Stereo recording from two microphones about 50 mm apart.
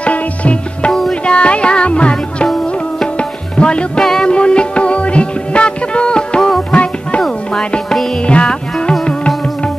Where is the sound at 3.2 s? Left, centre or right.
Left.